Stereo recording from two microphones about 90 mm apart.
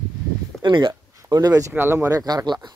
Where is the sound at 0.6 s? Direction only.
60° right (ahead or behind).